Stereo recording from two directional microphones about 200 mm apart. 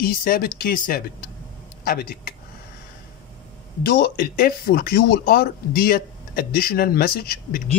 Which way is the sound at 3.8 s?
50° left (ahead or behind).